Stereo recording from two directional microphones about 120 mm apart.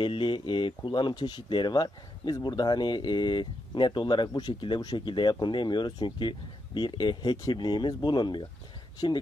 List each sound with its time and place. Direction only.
0.0 s speech: 45° left (ahead or behind)